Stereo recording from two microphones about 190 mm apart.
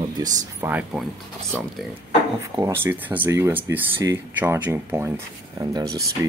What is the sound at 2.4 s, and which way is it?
Speech, 15° right (ahead or behind).